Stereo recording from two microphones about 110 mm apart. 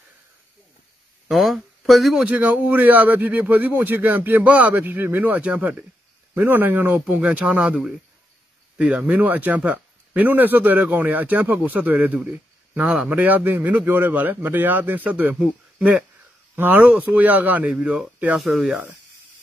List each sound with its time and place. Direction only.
1.3 s speech: centre (ahead or behind)
2.2 s speech: 15° right (ahead or behind)